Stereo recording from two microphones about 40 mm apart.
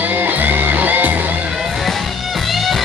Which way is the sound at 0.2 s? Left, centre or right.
Right.